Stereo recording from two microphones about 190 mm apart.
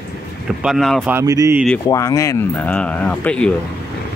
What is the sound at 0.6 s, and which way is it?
Speech, centre (ahead or behind).